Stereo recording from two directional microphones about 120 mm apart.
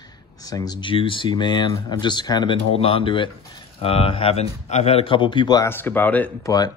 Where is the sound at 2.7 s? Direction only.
50° left (ahead or behind).